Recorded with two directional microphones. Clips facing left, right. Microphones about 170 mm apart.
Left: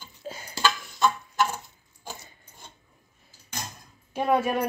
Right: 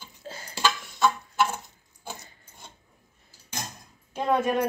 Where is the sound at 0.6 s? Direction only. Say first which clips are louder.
Even; 10° right (ahead or behind).